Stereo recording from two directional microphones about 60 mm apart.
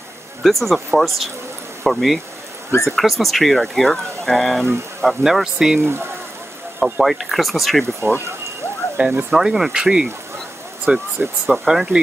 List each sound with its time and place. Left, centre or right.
0.4 s speech: centre
5.8 s speech: right
6.8 s speech: centre
8.0 s speech: right
9.0 s speech: right
9.3 s speech: centre; by 11.5 s right
11.5 s speech: centre